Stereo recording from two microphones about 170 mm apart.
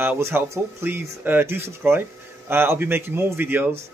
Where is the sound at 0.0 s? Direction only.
10° right (ahead or behind).